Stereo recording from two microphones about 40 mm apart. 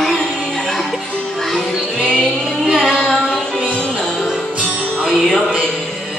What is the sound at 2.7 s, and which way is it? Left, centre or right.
Child singing, centre.